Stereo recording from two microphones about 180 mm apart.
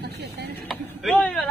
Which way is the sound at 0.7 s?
Centre (ahead or behind).